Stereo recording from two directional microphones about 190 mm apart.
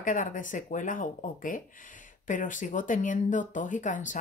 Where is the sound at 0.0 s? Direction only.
45° left (ahead or behind).